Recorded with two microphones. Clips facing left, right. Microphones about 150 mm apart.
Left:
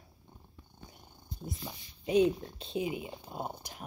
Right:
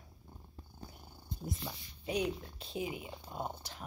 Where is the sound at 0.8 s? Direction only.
35° right (ahead or behind).